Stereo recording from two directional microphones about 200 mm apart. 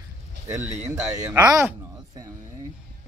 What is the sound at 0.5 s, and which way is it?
Speech, 15° right (ahead or behind).